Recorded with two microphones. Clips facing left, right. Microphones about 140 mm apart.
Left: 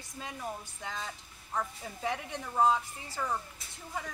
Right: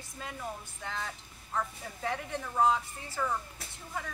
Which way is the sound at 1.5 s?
15° left (ahead or behind).